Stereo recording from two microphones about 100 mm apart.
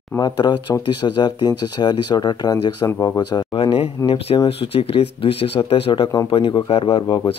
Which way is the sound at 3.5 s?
70° left (ahead or behind).